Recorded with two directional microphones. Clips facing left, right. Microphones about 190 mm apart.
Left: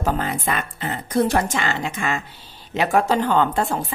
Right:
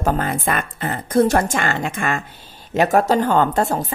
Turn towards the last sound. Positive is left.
turn(degrees=-40)  # may be behind; listen again after turning